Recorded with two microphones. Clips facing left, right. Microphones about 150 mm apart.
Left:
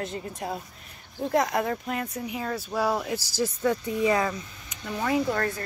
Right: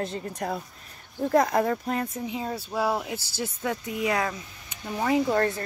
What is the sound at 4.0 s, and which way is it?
Speech, 5° right (ahead or behind).